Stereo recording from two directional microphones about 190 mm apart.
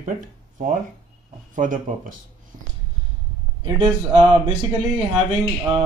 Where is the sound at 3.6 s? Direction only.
25° right (ahead or behind).